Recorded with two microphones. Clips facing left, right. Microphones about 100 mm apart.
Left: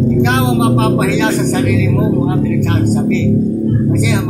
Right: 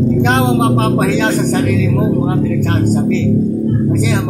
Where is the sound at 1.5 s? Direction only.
40° right (ahead or behind).